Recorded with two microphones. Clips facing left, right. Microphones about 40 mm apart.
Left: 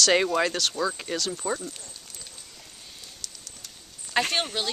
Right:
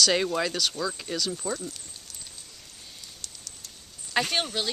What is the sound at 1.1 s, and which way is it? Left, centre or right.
Speech, centre.